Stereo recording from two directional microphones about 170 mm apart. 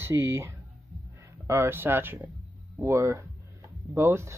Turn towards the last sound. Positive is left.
turn(degrees=-15)  # may be behind; listen again after turning